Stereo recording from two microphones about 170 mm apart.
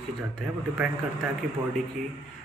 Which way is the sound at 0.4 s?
5° right (ahead or behind).